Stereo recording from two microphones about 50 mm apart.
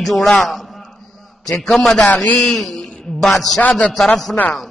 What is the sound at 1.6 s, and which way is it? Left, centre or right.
Music, centre.